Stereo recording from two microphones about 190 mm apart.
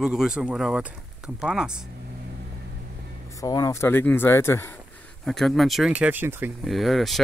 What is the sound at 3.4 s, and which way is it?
Speech, 20° left (ahead or behind).